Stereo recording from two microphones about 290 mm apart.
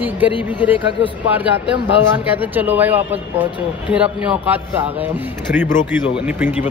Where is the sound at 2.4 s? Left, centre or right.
Centre.